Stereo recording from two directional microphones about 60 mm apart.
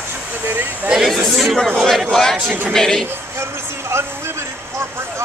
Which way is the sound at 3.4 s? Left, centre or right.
Right.